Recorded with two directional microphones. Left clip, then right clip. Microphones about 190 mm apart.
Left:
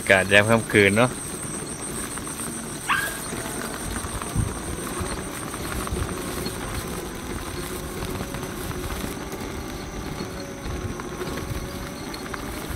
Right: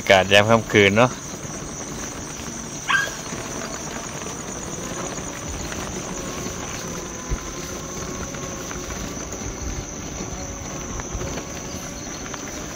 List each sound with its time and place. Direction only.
0.0 s speech: 20° right (ahead or behind)
2.9 s dog: 55° right (ahead or behind)